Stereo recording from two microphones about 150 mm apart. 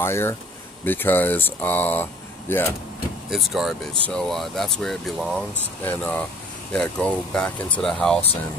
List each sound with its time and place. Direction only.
0.0 s speech: 15° left (ahead or behind)
3.3 s speech: centre (ahead or behind)